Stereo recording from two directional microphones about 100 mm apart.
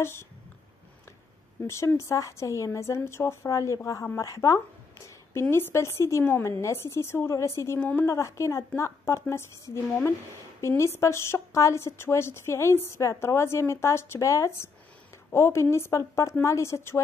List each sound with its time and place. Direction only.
0.0 s speech: 25° left (ahead or behind)
1.7 s a woman's voice: 30° left (ahead or behind)
10.6 s speech: 30° left (ahead or behind)